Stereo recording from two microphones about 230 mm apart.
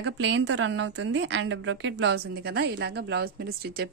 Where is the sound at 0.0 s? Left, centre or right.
Right.